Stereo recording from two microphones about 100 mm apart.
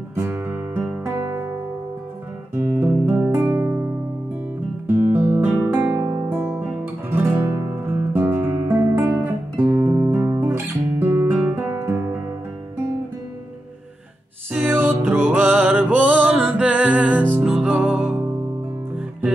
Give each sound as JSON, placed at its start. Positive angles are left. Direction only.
{"t": 0.1, "sound": "guitar", "side_deg": -25}
{"t": 1.0, "sound": "music", "side_deg": -30}
{"t": 2.5, "sound": "guitar", "side_deg": -20}
{"t": 3.3, "sound": "music", "side_deg": -30}
{"t": 4.8, "sound": "music", "side_deg": -20}
{"t": 5.4, "sound": "music", "side_deg": -10}
{"t": 5.9, "sound": "music", "side_deg": -35}
{"t": 6.2, "sound": "music", "side_deg": -20}
{"t": 9.8, "sound": "guitar", "side_deg": -35}
{"t": 10.4, "sound": "guitar", "side_deg": -20}
{"t": 14.5, "sound": "music", "side_deg": -20}